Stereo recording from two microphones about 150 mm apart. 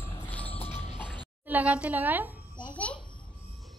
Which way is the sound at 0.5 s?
40° left (ahead or behind).